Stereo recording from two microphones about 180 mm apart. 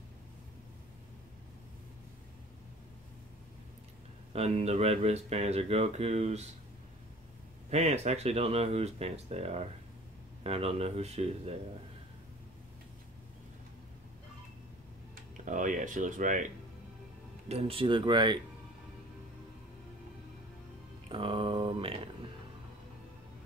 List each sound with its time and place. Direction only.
4.3 s speech: 35° right (ahead or behind)
7.7 s speech: 35° right (ahead or behind)
15.1 s speech: 45° right (ahead or behind)
17.5 s speech: 35° right (ahead or behind)
21.1 s a sound: 30° right (ahead or behind)